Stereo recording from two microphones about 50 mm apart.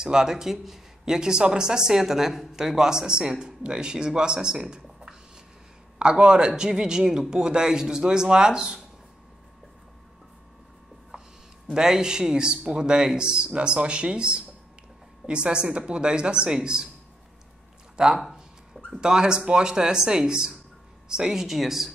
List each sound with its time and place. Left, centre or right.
0.0 s speech: centre
11.7 s speech: centre
17.9 s speech: centre